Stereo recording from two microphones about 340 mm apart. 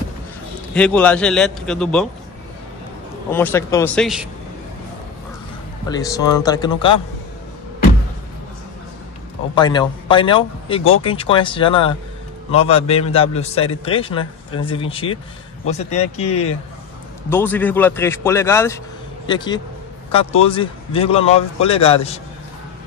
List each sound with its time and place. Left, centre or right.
0.7 s a man's voice: centre
3.3 s a man's voice: centre
5.9 s a man's voice: centre
9.6 s a man's voice: centre
17.3 s a man's voice: centre